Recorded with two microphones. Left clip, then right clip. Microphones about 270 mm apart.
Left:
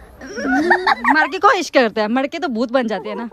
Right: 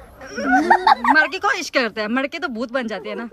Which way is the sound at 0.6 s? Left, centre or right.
Left.